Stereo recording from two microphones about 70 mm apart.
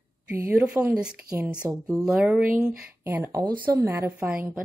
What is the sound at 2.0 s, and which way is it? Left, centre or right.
Speech, centre.